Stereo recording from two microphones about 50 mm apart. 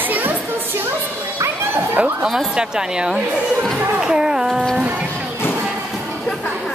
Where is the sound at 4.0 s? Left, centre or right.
Centre.